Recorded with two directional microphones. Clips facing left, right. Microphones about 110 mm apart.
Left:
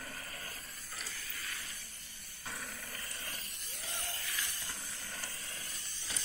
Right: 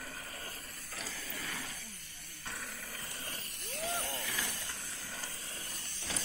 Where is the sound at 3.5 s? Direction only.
60° right (ahead or behind).